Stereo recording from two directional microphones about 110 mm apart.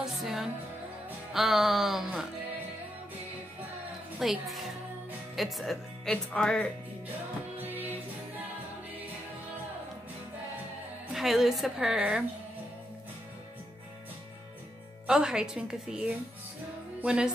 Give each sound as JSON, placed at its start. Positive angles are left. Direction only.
{"t": 0.0, "sound": "music", "side_deg": -5}
{"t": 1.3, "sound": "a woman's voice", "side_deg": -5}
{"t": 4.2, "sound": "a woman's voice", "side_deg": 0}
{"t": 11.1, "sound": "a woman's voice", "side_deg": 0}
{"t": 15.0, "sound": "a woman's voice", "side_deg": -5}